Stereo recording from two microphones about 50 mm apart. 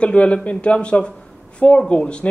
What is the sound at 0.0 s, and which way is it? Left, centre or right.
Speech, left.